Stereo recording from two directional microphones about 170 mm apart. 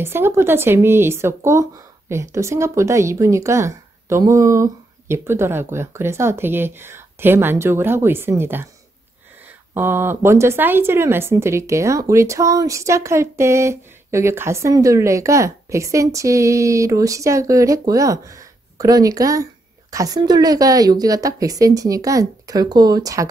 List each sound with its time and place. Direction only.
0.0 s speech: 15° right (ahead or behind)
9.8 s a woman's voice: 15° right (ahead or behind)